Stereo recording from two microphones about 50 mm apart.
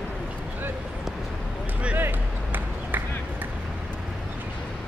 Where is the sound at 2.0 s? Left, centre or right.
Right.